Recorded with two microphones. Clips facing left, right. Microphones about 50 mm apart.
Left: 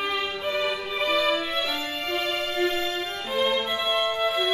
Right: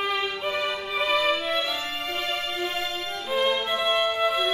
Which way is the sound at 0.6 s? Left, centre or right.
Centre.